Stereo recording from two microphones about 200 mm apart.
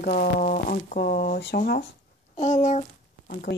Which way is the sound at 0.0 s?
45° left (ahead or behind).